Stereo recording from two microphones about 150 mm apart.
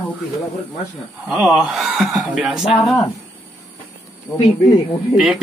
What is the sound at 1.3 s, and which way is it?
Speech, centre (ahead or behind).